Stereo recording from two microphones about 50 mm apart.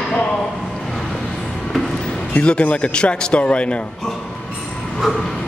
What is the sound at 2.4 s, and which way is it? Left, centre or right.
Speech, left.